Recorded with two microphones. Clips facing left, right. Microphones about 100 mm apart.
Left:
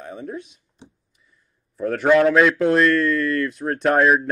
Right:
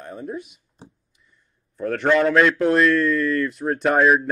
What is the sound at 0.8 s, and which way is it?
Speech, centre (ahead or behind).